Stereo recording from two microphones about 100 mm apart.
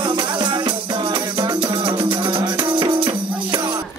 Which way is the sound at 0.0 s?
50° right (ahead or behind).